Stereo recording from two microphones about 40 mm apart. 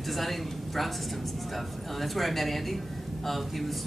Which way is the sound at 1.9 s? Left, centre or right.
Centre.